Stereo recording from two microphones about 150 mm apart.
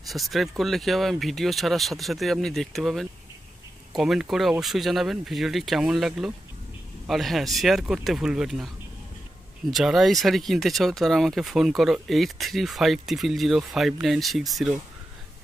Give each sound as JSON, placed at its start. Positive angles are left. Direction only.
{"t": 0.1, "sound": "speech", "side_deg": 0}
{"t": 9.7, "sound": "speech", "side_deg": 0}